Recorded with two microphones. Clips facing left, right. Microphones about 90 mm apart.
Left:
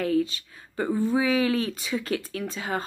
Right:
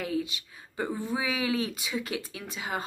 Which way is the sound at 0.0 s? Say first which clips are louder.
Left 7 dB; 15° right (ahead or behind).